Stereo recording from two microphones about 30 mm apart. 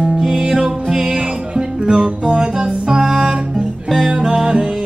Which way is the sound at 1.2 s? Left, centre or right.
Right.